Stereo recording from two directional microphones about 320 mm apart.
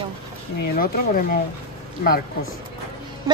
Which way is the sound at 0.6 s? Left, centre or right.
Left.